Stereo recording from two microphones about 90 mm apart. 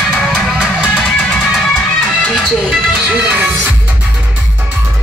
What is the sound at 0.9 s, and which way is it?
Music, 5° left (ahead or behind).